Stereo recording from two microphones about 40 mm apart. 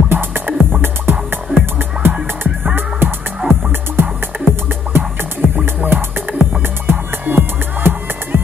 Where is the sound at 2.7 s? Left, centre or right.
Right.